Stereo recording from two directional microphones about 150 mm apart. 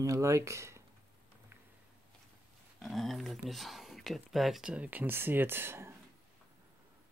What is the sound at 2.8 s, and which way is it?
Speech, centre (ahead or behind).